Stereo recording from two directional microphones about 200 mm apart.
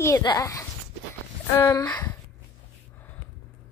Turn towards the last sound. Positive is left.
turn(degrees=20)  # may be behind; listen again after turning